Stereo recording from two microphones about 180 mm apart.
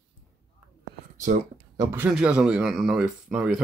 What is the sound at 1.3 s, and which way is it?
Speech, 45° right (ahead or behind).